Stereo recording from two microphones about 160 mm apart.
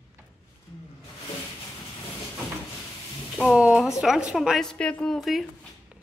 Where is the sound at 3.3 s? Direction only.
Centre (ahead or behind).